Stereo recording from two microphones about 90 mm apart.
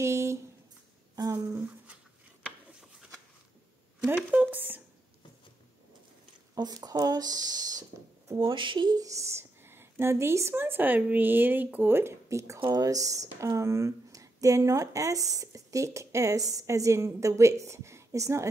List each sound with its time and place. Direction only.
0.0 s a sound: 30° right (ahead or behind)
1.1 s a sound: 45° right (ahead or behind)
4.0 s speech: 15° right (ahead or behind)
6.5 s speech: 45° right (ahead or behind)
8.4 s speech: 65° right (ahead or behind)
8.9 s speech: 35° right (ahead or behind)